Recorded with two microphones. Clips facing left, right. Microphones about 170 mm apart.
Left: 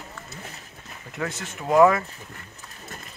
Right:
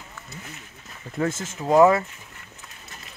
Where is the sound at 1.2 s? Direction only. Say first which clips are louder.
Right 5 dB; 35° right (ahead or behind).